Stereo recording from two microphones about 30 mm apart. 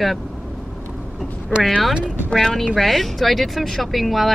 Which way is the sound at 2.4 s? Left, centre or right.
Centre.